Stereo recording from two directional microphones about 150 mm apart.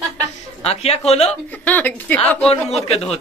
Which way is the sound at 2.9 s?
45° left (ahead or behind).